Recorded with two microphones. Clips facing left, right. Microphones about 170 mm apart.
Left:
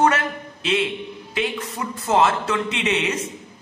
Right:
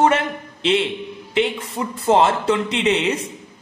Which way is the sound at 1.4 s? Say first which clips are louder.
Right 5 dB; 30° right (ahead or behind).